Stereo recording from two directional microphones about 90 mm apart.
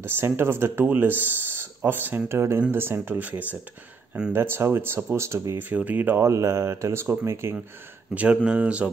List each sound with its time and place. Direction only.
0.0 s speech: 25° right (ahead or behind)
5.6 s speech: 20° right (ahead or behind)
8.1 s speech: 15° right (ahead or behind)